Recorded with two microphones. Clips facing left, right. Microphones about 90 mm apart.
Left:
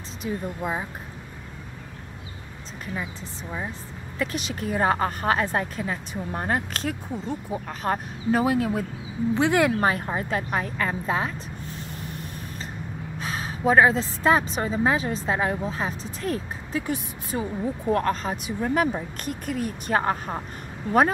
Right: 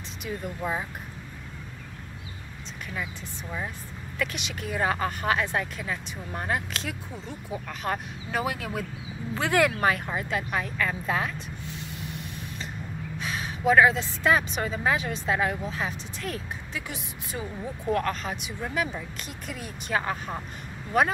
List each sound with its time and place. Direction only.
0.3 s speech: 30° left (ahead or behind)
0.6 s speech: 20° left (ahead or behind)
4.2 s speech: 35° left (ahead or behind)
11.6 s snort: 45° left (ahead or behind)
13.2 s speech: 35° left (ahead or behind)